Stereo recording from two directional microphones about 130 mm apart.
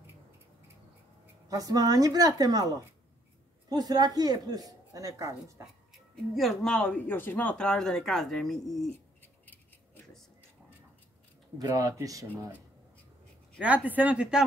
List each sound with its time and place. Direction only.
1.5 s speech: 30° right (ahead or behind)
6.3 s speech: centre (ahead or behind)
9.2 s a sound: 15° left (ahead or behind)
11.5 s speech: 30° right (ahead or behind)
13.6 s speech: 10° right (ahead or behind)